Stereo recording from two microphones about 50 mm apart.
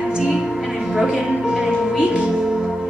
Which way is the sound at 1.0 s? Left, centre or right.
Centre.